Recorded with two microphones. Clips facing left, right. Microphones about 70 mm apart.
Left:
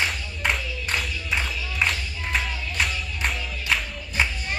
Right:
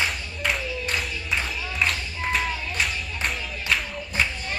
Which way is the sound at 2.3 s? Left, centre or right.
Centre.